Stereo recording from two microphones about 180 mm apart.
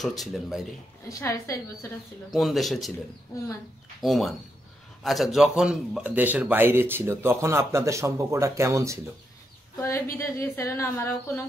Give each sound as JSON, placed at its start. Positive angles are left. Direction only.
{"t": 0.0, "sound": "speech", "side_deg": 0}
{"t": 1.0, "sound": "a woman's voice", "side_deg": 15}
{"t": 2.3, "sound": "speech", "side_deg": 0}
{"t": 4.0, "sound": "a man's voice", "side_deg": 0}
{"t": 9.8, "sound": "a woman's voice", "side_deg": 15}